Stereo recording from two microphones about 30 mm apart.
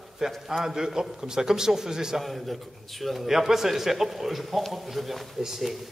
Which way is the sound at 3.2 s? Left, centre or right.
Centre.